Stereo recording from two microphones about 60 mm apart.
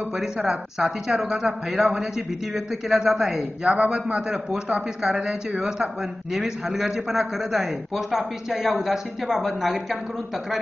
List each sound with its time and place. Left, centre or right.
0.1 s a man's voice: centre
3.7 s a man's voice: centre